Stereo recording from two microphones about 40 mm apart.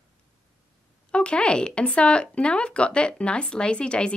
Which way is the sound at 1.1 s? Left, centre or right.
Left.